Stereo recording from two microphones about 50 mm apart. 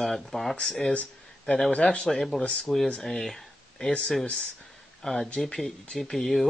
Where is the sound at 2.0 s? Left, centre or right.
Centre.